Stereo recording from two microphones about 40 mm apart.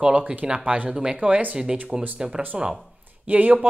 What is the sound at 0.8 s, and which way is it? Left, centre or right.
Speech, centre.